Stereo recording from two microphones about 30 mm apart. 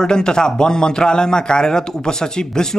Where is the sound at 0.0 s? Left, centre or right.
Left.